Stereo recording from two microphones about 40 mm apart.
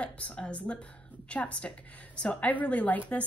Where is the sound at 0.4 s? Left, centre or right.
Left.